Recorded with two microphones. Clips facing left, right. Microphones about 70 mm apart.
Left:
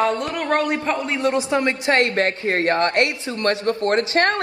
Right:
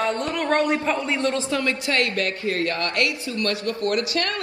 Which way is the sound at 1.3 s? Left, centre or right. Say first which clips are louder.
Left 4 dB; left.